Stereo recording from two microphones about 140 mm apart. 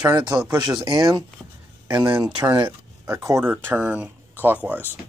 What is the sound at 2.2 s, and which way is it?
Speech, 25° right (ahead or behind).